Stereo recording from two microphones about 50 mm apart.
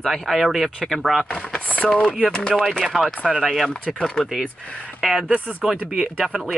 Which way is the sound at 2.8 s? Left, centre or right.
Centre.